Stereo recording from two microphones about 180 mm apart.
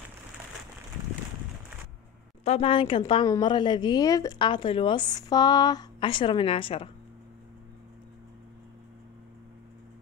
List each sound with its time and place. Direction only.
2.4 s a woman's voice: 35° left (ahead or behind)